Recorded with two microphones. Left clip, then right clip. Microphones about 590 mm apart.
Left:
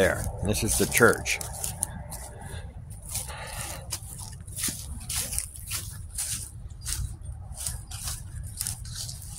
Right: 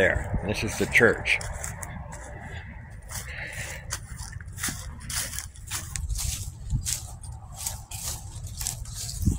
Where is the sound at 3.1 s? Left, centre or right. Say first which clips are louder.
Right 1 dB; left.